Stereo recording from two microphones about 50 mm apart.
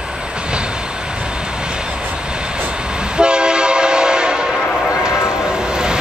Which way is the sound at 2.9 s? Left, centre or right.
Centre.